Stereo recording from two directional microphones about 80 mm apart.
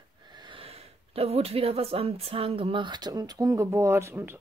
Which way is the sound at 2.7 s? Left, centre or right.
Right.